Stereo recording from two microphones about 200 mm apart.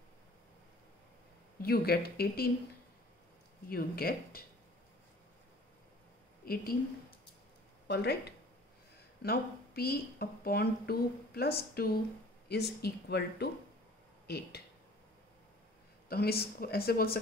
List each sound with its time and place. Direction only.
1.6 s speech: 50° left (ahead or behind)
3.6 s speech: 50° left (ahead or behind)
6.4 s a woman's voice: 45° left (ahead or behind)
7.9 s speech: 55° left (ahead or behind)
9.2 s speech: 50° left (ahead or behind)
16.1 s speech: 50° left (ahead or behind)